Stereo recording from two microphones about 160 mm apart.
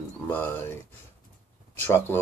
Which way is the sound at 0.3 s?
15° left (ahead or behind).